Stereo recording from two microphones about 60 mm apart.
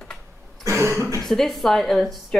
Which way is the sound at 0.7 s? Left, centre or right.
Right.